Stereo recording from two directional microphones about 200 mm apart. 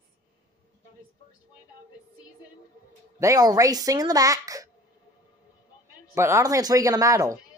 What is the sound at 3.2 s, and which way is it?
Speech, 15° right (ahead or behind).